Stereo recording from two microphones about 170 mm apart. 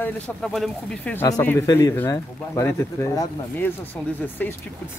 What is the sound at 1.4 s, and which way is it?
Speech, 15° left (ahead or behind).